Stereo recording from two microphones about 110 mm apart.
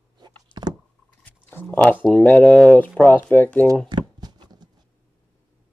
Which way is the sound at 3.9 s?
40° right (ahead or behind).